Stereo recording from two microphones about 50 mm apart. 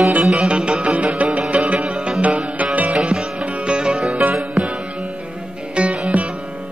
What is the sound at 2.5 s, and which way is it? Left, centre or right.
Music, right.